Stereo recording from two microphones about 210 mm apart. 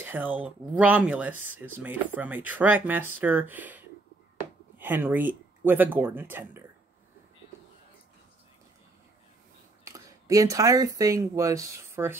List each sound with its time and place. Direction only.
0.0 s speech: 10° right (ahead or behind)
9.8 s speech: 15° right (ahead or behind)